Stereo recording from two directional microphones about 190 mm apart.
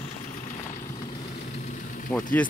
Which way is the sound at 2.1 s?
10° left (ahead or behind).